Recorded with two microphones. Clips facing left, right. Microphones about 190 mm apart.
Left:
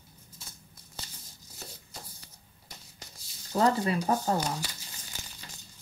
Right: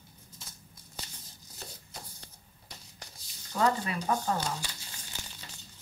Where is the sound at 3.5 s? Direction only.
35° left (ahead or behind).